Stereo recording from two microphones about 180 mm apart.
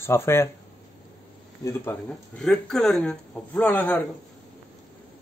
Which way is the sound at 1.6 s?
15° left (ahead or behind).